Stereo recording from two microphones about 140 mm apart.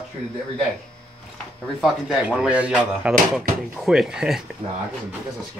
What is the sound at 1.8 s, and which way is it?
Speech, 5° right (ahead or behind).